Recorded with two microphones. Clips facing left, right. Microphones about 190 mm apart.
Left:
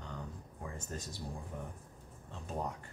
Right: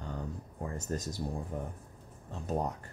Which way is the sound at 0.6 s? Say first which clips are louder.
Right 7 dB; 40° right (ahead or behind).